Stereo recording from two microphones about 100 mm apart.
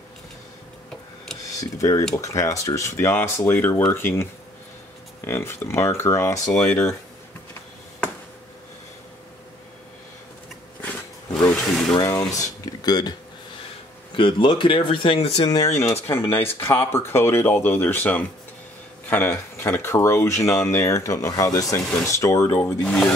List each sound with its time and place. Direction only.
1.4 s speech: 35° left (ahead or behind)
6.5 s speech: 10° left (ahead or behind)
11.9 s a sound: 40° left (ahead or behind)
12.3 s speech: 40° left (ahead or behind)
14.1 s speech: 55° left (ahead or behind); by 15.4 s 80° left
15.4 s speech: 45° left (ahead or behind)
15.8 s speech: 25° left (ahead or behind)
22.8 s speech: 5° left (ahead or behind)